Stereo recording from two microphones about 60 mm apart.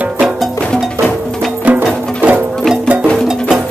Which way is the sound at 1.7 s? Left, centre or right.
Right.